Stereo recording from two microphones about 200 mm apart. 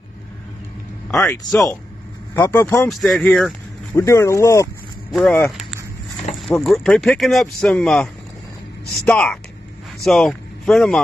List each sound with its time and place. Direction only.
1.2 s speech: 15° left (ahead or behind)
2.9 s speech: centre (ahead or behind)
3.9 s speech: 15° left (ahead or behind)
5.1 s speech: 5° left (ahead or behind)
6.6 s speech: centre (ahead or behind)